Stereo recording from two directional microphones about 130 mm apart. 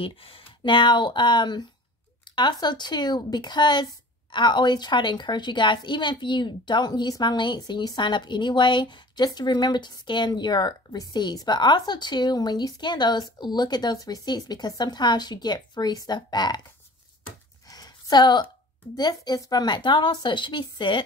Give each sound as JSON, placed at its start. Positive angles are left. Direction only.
{"t": 0.0, "sound": "a woman's voice", "side_deg": 45}
{"t": 17.6, "sound": "a sound", "side_deg": 30}
{"t": 18.9, "sound": "a woman's voice", "side_deg": 30}